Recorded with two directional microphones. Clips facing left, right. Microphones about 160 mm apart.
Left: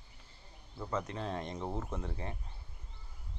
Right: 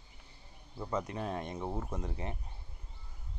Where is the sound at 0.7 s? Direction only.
15° right (ahead or behind).